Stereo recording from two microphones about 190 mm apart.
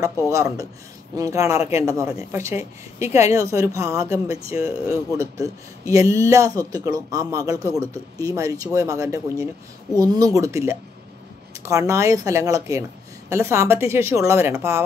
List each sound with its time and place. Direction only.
0.0 s a man's voice: 15° right (ahead or behind)